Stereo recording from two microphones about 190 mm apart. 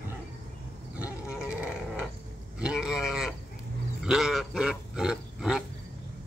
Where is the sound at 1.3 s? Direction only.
5° right (ahead or behind).